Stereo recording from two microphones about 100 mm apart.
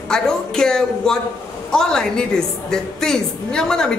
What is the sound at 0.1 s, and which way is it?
A woman's voice, 5° left (ahead or behind).